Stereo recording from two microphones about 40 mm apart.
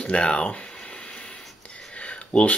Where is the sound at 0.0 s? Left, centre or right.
Left.